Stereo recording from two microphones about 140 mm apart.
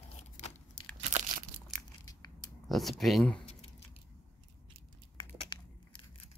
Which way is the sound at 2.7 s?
Centre (ahead or behind).